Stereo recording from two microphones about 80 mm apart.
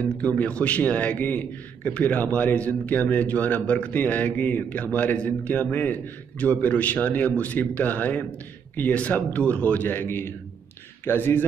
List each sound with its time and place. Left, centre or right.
0.2 s a man's voice: centre